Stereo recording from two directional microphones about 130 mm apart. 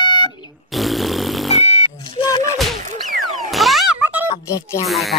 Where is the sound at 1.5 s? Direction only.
50° left (ahead or behind).